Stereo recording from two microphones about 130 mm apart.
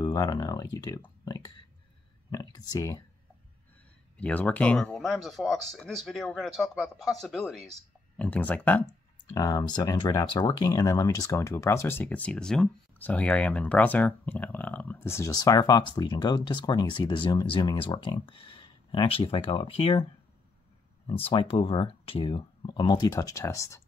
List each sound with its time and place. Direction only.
0.0 s speech: 30° left (ahead or behind)
2.3 s a sound: 30° left (ahead or behind)
4.2 s speech: 10° left (ahead or behind)
8.2 s speech: 10° left (ahead or behind)
9.3 s speech: 30° left (ahead or behind); by 20.1 s 45° left (ahead or behind)
21.1 s speech: 40° left (ahead or behind); by 23.8 s 25° left (ahead or behind)